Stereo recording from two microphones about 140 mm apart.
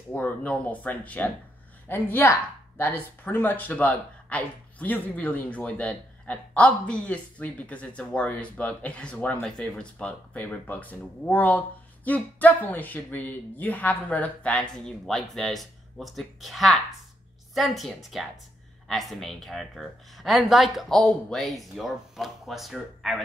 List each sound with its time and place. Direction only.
0.1 s speech: 10° left (ahead or behind)